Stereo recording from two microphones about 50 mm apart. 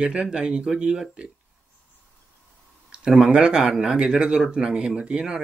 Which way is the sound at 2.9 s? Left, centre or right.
Right.